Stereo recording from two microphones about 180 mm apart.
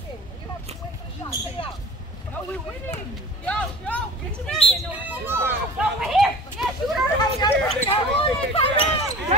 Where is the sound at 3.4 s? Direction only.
5° left (ahead or behind).